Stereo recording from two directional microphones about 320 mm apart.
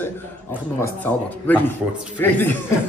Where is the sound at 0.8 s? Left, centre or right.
Centre.